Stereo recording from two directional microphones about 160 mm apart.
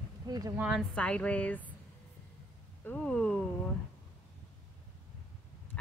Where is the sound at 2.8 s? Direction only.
10° left (ahead or behind).